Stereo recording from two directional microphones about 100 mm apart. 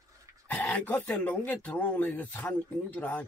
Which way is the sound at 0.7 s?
15° left (ahead or behind).